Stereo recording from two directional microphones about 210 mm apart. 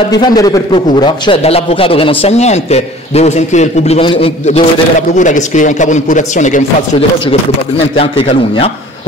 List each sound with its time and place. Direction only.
0.1 s a man's voice: 20° left (ahead or behind)
5.1 s a man's voice: 35° left (ahead or behind)
7.2 s a man's voice: 25° left (ahead or behind)